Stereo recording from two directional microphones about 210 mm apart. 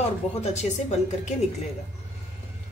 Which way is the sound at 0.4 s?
35° left (ahead or behind).